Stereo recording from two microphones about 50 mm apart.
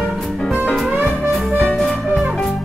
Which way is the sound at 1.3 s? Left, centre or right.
Centre.